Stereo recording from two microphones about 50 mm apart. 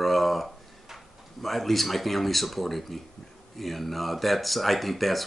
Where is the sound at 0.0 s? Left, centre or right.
Centre.